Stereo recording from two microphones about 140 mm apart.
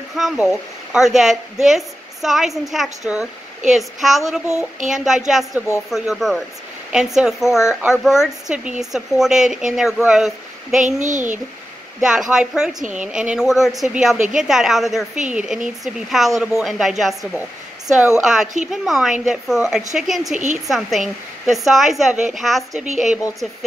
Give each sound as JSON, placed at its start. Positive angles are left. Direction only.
{"t": 0.1, "sound": "speech", "side_deg": 0}
{"t": 10.8, "sound": "a child's voice", "side_deg": -60}
{"t": 12.0, "sound": "speech", "side_deg": -5}
{"t": 22.8, "sound": "a child's voice", "side_deg": -60}